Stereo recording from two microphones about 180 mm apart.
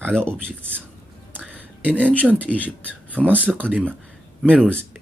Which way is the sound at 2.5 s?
Centre (ahead or behind).